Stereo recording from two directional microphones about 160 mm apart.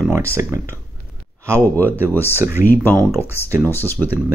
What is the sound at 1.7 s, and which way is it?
Speech, 10° left (ahead or behind).